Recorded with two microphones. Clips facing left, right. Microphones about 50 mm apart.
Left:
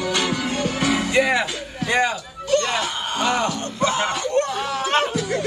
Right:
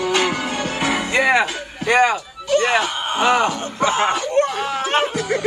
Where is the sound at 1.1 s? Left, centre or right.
Right.